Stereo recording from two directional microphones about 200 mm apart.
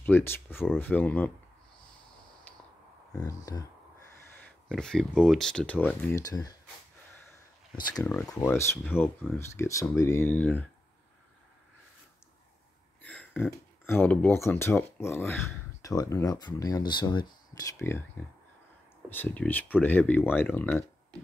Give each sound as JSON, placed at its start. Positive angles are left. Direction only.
{"t": 0.0, "sound": "speech", "side_deg": 10}
{"t": 2.5, "sound": "a sound", "side_deg": 10}
{"t": 3.2, "sound": "speech", "side_deg": 15}
{"t": 4.4, "sound": "speech", "side_deg": 5}
{"t": 8.3, "sound": "speech", "side_deg": 15}
{"t": 13.0, "sound": "speech", "side_deg": 5}
{"t": 19.0, "sound": "speech", "side_deg": 10}